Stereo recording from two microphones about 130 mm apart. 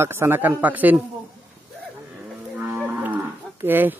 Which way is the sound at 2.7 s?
15° right (ahead or behind).